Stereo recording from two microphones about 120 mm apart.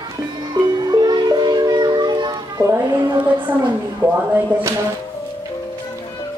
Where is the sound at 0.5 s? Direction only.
35° right (ahead or behind).